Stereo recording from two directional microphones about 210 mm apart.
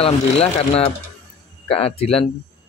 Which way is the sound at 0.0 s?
30° left (ahead or behind).